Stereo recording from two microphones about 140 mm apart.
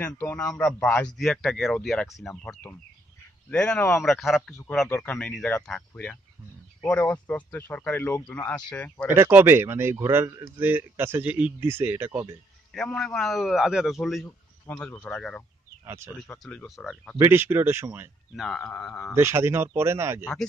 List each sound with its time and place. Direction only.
0.0 s a man's voice: 15° left (ahead or behind)
4.8 s a man's voice: 15° left (ahead or behind)
9.1 s a man's voice: 15° right (ahead or behind)
12.7 s a man's voice: 5° left (ahead or behind)
14.2 s speech: 15° left (ahead or behind)
15.8 s speech: 20° right (ahead or behind)
16.4 s a man's voice: centre (ahead or behind)
17.2 s a man's voice: 15° right (ahead or behind)
18.3 s a man's voice: centre (ahead or behind)
19.1 s a man's voice: 15° right (ahead or behind)